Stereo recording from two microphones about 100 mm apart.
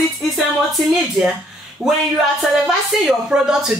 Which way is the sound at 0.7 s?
Centre (ahead or behind).